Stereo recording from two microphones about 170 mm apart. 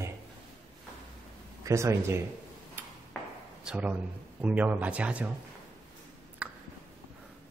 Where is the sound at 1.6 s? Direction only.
15° right (ahead or behind).